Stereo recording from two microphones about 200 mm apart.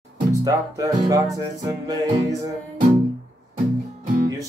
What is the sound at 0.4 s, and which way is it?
Music, 20° right (ahead or behind).